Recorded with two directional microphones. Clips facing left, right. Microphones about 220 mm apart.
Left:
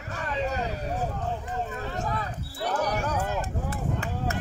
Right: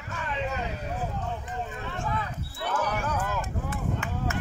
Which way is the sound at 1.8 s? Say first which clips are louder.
Left 1 dB; 40° left (ahead or behind).